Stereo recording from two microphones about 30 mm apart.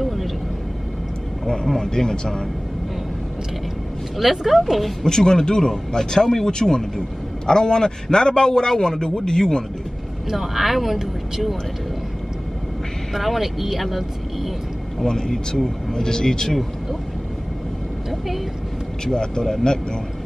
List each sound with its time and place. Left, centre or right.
0.0 s vehicle: centre
1.9 s speech: centre
4.2 s speech: centre
5.0 s a man's voice: left
10.3 s speech: centre
13.1 s speech: centre
15.0 s a man's voice: centre